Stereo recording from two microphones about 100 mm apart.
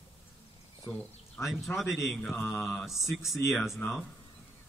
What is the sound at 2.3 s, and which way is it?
Mantra, 20° left (ahead or behind).